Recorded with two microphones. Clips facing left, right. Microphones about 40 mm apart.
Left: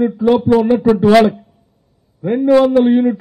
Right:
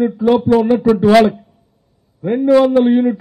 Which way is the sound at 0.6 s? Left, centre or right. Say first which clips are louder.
Even; left.